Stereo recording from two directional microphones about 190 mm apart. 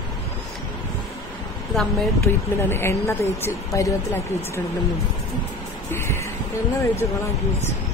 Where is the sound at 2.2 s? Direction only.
15° left (ahead or behind).